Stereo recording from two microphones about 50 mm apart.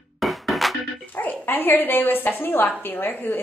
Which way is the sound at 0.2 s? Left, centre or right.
Centre.